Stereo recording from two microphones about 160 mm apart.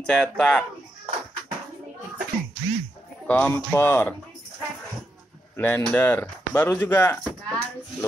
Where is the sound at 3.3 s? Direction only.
10° left (ahead or behind).